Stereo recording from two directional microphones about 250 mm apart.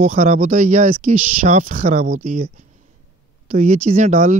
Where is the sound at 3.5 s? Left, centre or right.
Right.